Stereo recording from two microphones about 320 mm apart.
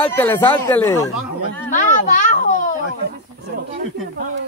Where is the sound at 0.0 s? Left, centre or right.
Centre.